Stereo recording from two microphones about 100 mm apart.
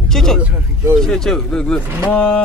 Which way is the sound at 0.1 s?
5° left (ahead or behind).